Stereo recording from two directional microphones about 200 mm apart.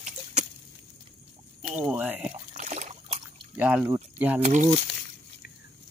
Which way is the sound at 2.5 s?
35° right (ahead or behind).